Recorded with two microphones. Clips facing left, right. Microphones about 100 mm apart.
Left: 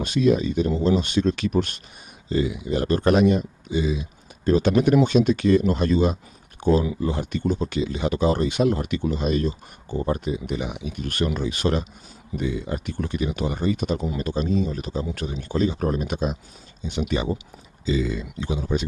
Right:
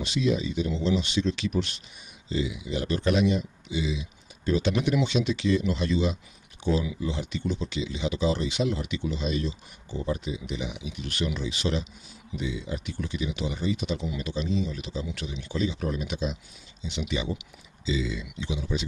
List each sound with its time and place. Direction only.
0.0 s speech: 50° left (ahead or behind)